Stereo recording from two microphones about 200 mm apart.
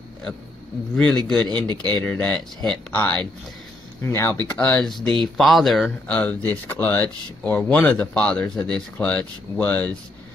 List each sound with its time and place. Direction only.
0.9 s a man's voice: 5° left (ahead or behind)
1.7 s speech: 20° right (ahead or behind)
2.0 s speech: 5° left (ahead or behind)